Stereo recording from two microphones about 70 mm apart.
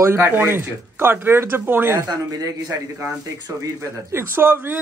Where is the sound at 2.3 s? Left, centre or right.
Right.